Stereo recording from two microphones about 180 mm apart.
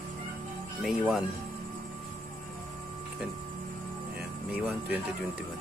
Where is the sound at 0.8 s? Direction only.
Centre (ahead or behind).